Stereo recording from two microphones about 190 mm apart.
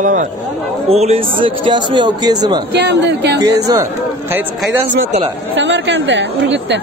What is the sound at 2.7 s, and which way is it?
Speech, 60° right (ahead or behind).